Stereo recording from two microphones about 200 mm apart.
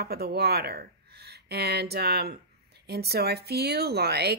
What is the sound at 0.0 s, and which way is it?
Speech, 50° right (ahead or behind).